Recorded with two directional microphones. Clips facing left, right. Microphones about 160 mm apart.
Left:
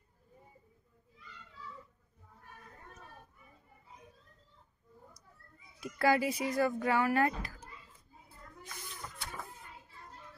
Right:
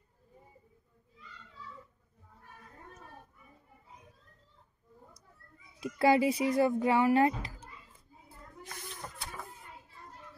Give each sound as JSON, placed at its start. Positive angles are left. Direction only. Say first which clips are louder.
{"t": 5.8, "sound": "speech", "louder": "right 4 dB", "side_deg": -25}